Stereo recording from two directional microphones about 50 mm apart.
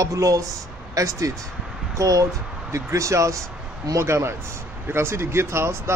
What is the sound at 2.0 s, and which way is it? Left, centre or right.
Speech, right.